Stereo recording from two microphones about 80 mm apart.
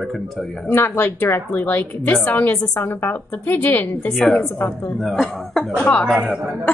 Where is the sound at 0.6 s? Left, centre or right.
Left.